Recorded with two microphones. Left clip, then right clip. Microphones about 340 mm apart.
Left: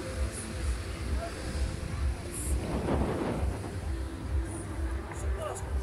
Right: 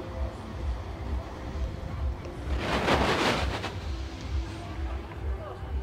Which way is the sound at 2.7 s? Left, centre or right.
Right.